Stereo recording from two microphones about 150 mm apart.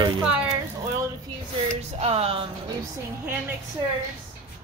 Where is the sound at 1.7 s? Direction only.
45° right (ahead or behind).